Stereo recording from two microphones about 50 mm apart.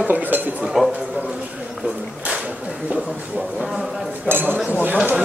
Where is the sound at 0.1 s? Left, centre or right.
Right.